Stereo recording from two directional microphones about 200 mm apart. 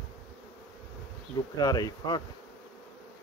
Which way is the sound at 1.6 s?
20° left (ahead or behind).